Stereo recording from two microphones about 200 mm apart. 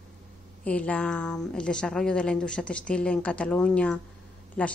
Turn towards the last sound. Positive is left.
turn(degrees=5)  # may be behind; listen again after turning